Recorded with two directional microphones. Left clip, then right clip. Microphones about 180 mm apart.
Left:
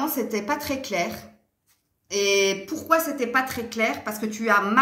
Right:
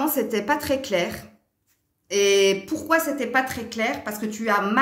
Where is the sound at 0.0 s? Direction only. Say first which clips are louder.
Right 3 dB; 45° right (ahead or behind).